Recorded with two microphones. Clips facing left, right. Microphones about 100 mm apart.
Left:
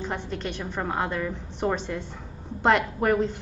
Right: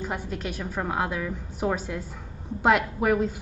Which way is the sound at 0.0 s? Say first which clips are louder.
Even; 5° right (ahead or behind).